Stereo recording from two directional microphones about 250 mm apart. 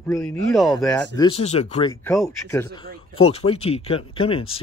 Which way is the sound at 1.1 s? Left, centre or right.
Left.